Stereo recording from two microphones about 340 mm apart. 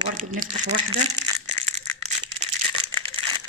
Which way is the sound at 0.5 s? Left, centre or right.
Right.